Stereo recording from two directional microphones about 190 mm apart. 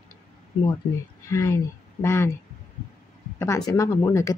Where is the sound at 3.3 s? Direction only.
15° left (ahead or behind).